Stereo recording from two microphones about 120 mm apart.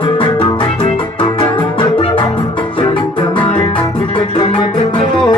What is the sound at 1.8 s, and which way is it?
Music, 45° left (ahead or behind).